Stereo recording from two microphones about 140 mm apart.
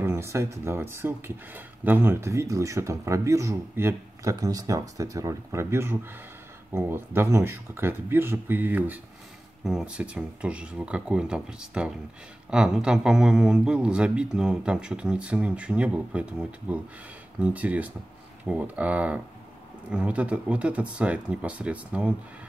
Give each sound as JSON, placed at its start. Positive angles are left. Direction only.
{"t": 0.0, "sound": "speech", "side_deg": -15}